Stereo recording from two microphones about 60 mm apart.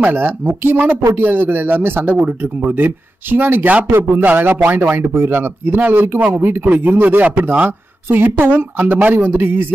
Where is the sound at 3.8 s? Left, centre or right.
Right.